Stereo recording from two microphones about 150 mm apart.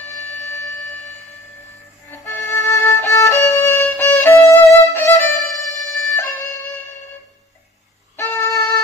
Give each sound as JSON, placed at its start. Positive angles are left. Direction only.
{"t": 0.4, "sound": "wind instrument", "side_deg": 20}
{"t": 2.0, "sound": "violin", "side_deg": 15}
{"t": 8.2, "sound": "music", "side_deg": 25}